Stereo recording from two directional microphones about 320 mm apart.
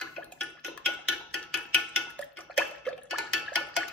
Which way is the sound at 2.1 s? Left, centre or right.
Centre.